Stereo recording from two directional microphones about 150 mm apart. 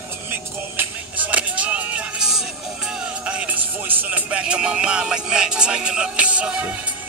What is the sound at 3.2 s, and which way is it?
Speech, 10° right (ahead or behind).